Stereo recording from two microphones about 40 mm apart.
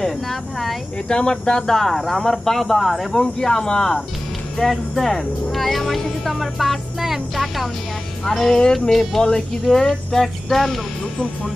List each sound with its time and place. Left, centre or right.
0.0 s speech: centre
1.0 s speech: centre
1.8 s speech: centre
3.2 s speech: centre
4.6 s speech: centre
8.3 s speech: centre